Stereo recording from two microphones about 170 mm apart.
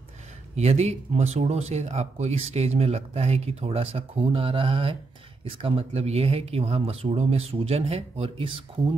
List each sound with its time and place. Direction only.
0.6 s speech: 40° right (ahead or behind)